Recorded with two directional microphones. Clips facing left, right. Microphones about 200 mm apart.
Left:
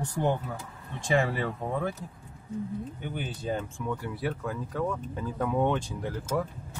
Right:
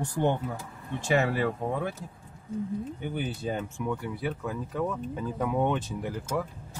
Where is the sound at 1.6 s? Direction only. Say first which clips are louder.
Right 2 dB; 15° right (ahead or behind).